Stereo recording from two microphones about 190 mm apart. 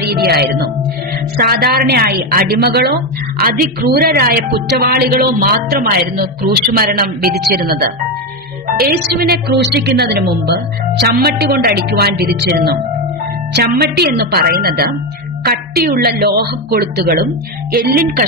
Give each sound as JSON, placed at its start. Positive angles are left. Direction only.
{"t": 0.1, "sound": "a woman's voice", "side_deg": -55}